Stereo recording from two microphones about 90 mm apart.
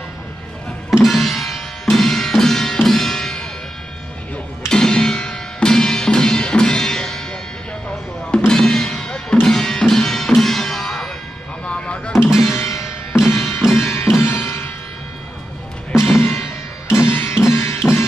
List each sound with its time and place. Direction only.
1.0 s music: centre (ahead or behind)
4.6 s music: 10° left (ahead or behind)
8.3 s music: 10° left (ahead or behind)
11.6 s a sound: 15° left (ahead or behind)
12.4 s music: 30° left (ahead or behind)
16.0 s music: 25° left (ahead or behind)